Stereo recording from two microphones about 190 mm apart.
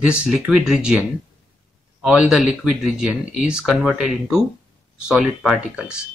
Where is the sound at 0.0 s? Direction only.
5° right (ahead or behind).